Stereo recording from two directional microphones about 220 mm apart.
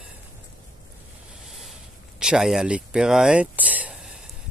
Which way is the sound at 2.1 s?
5° right (ahead or behind).